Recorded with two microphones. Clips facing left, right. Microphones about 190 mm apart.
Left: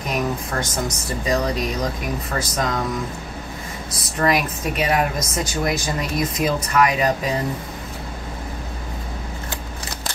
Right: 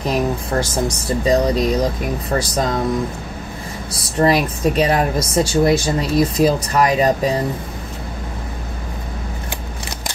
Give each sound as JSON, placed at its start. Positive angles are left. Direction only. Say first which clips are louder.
{"t": 0.0, "sound": "speech", "louder": "right 4 dB", "side_deg": -30}
{"t": 4.2, "sound": "speech", "louder": "right 5 dB", "side_deg": -35}